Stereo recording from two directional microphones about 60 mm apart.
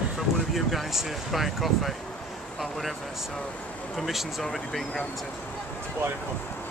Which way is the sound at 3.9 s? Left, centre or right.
Centre.